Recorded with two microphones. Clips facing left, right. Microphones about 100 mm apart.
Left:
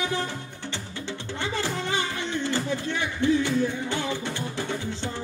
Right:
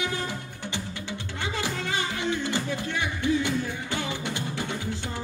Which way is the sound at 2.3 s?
15° right (ahead or behind).